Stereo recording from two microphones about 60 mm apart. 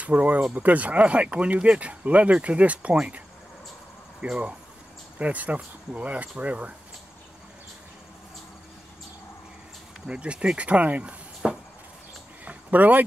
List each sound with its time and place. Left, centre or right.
0.0 s speech: right
4.2 s speech: right
10.0 s speech: centre
12.4 s a sound: right